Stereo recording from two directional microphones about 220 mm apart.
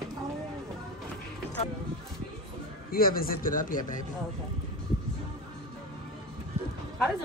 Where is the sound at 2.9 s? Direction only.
40° left (ahead or behind).